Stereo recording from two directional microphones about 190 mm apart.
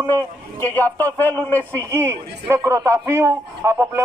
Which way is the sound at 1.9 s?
15° right (ahead or behind).